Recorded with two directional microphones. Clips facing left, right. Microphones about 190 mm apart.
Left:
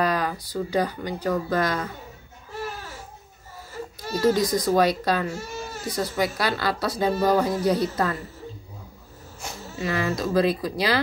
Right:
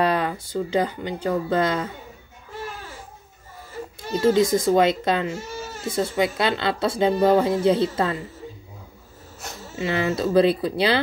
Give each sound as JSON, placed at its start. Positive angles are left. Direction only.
{"t": 0.0, "sound": "speech", "side_deg": -25}
{"t": 4.1, "sound": "speech", "side_deg": -25}
{"t": 9.8, "sound": "speech", "side_deg": -25}